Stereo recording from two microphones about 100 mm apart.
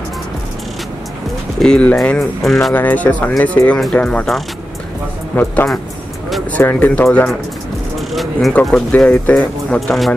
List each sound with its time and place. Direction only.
1.6 s speech: 10° left (ahead or behind)
2.7 s speech: 15° left (ahead or behind)
8.1 s speech: centre (ahead or behind)
9.8 s speech: centre (ahead or behind)